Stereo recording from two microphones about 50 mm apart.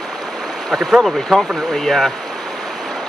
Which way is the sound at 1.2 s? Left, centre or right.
Centre.